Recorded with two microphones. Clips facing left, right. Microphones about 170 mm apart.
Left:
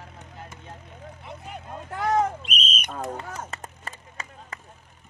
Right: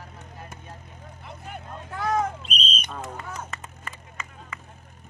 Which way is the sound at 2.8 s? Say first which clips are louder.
Left 3 dB; 55° left (ahead or behind).